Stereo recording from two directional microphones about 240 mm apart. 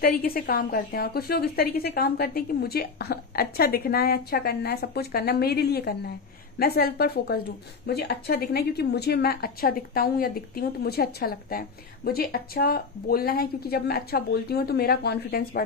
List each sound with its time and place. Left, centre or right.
0.0 s a woman's voice: left